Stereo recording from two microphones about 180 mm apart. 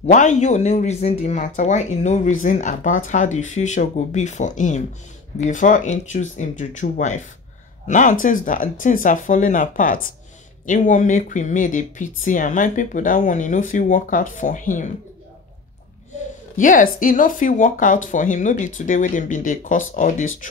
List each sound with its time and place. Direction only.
0.0 s speech: 45° left (ahead or behind)
16.5 s speech: 45° left (ahead or behind)